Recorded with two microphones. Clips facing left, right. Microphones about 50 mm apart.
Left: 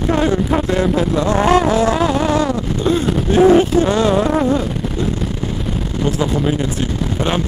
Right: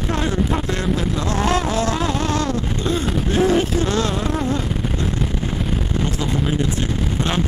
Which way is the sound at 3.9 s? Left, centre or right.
Centre.